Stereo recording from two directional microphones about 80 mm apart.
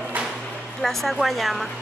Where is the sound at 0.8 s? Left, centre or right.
Centre.